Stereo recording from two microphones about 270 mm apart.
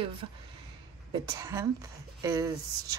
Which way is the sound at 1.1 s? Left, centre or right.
Centre.